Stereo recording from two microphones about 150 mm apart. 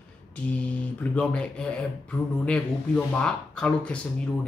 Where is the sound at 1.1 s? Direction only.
5° left (ahead or behind).